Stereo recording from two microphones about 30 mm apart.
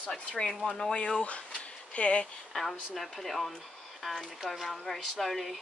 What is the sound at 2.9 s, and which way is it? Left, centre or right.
Speech, centre.